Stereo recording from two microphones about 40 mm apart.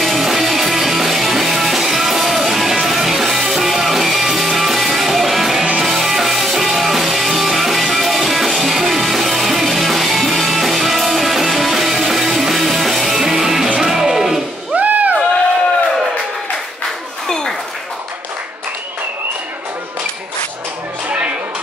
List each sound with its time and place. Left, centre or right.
0.0 s music: centre
14.8 s music: right
17.3 s a sound: centre